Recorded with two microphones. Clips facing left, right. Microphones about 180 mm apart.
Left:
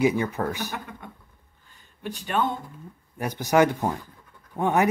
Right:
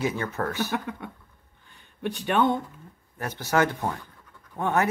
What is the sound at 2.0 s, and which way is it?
Speech, 60° right (ahead or behind).